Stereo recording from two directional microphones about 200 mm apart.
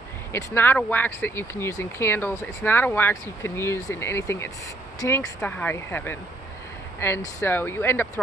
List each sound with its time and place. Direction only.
0.3 s speech: 10° left (ahead or behind)